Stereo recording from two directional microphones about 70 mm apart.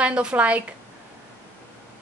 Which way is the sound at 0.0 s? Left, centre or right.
Centre.